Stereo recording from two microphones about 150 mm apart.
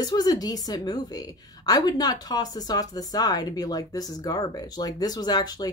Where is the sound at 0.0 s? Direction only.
25° left (ahead or behind).